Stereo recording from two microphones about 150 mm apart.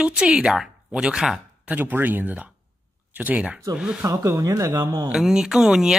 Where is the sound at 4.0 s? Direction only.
20° right (ahead or behind).